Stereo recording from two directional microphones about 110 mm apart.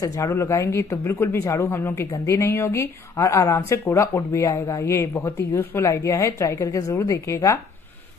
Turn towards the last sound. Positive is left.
turn(degrees=30)  # may be behind; listen again after turning